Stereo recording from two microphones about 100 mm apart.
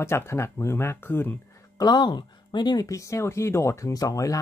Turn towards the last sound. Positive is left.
turn(degrees=35)  # may be behind; listen again after turning